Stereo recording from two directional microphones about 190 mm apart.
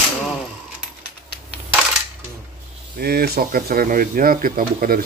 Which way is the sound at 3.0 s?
55° right (ahead or behind).